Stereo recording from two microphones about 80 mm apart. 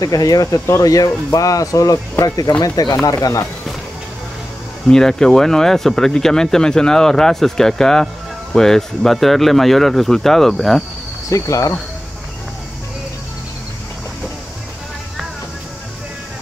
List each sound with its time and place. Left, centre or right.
0.0 s speech: left
4.8 s speech: centre
11.2 s speech: left